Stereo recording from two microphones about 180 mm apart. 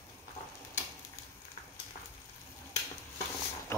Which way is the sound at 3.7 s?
15° left (ahead or behind).